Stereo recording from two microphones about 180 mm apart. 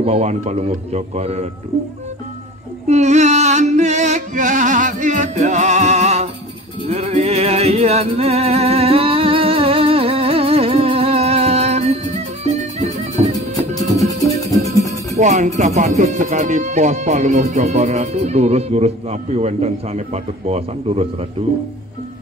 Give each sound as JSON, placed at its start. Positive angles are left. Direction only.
{"t": 0.0, "sound": "speech", "side_deg": -35}
{"t": 2.9, "sound": "music", "side_deg": -40}
{"t": 13.9, "sound": "music", "side_deg": 20}
{"t": 15.1, "sound": "speech", "side_deg": -40}